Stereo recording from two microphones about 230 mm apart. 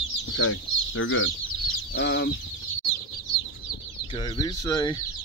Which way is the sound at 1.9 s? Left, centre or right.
Left.